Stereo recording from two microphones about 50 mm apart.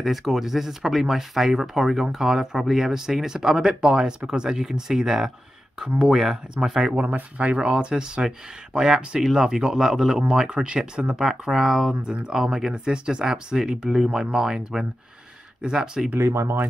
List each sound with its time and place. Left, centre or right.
0.0 s speech: centre
7.0 s speech: right; by 11.9 s centre
11.9 s speech: centre
16.2 s speech: right